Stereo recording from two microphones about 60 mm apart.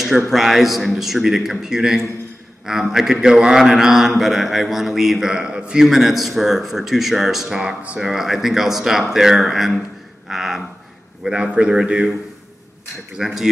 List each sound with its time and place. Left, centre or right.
0.3 s a man's voice: centre
8.0 s a man's voice: centre
13.2 s a man's voice: centre